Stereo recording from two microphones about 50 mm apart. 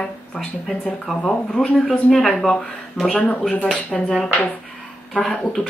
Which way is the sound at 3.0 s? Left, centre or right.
Left.